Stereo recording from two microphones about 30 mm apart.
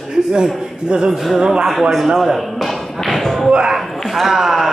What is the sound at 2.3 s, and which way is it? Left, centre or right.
Thump, centre.